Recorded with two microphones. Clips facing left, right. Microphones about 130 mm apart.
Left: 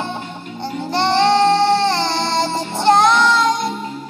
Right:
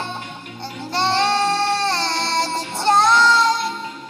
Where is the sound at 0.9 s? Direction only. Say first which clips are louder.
Left 4 dB; 20° left (ahead or behind).